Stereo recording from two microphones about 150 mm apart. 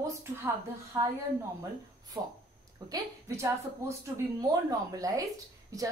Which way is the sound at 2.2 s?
25° right (ahead or behind).